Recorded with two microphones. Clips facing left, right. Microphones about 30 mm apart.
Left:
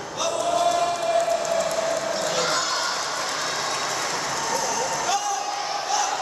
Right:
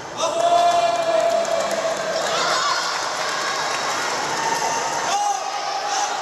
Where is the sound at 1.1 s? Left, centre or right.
Right.